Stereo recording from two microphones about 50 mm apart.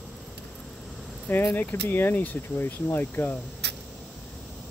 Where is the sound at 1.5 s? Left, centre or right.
Left.